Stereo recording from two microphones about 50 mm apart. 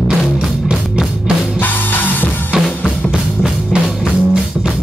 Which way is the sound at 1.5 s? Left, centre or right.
Left.